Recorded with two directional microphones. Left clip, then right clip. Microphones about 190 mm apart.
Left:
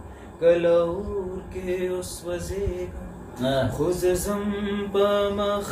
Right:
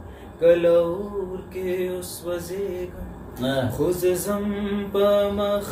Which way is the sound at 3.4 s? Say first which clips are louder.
Left 1 dB; 25° right (ahead or behind).